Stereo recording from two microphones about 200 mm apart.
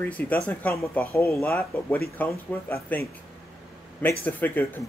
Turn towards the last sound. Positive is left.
turn(degrees=10)  # may be behind; listen again after turning